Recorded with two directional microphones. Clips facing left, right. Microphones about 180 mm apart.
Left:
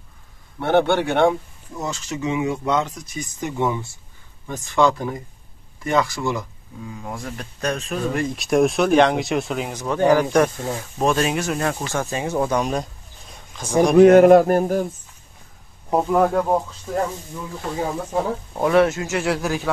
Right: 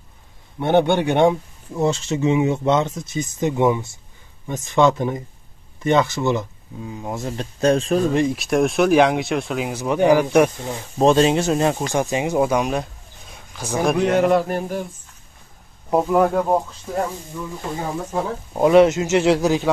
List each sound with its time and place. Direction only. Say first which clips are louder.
0.6 s speech: right 1 dB; 15° right (ahead or behind)
8.4 s speech: even; centre (ahead or behind)
11.0 s speech: right 6 dB; 25° right (ahead or behind); by 12.8 s 5° right (ahead or behind)
13.3 s a sound: left 3 dB; 5° right (ahead or behind)
13.9 s a sound: left 9 dB; 50° left (ahead or behind)
15.9 s speech: right 1 dB; 5° right (ahead or behind)
18.5 s speech: right 5 dB; 20° right (ahead or behind)